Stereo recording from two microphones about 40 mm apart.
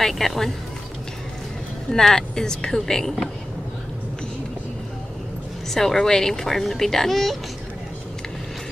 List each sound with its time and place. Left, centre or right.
0.0 s speech: centre
1.9 s speech: centre
5.7 s speech: centre